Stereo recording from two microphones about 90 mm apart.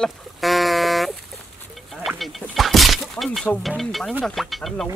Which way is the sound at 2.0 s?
Centre (ahead or behind).